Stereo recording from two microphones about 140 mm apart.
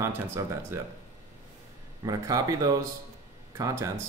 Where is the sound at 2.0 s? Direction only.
25° right (ahead or behind).